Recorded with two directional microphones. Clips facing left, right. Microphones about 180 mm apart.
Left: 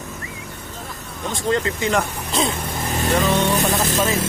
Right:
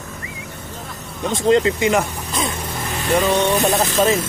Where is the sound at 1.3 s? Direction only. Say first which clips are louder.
Right 6 dB; 20° right (ahead or behind).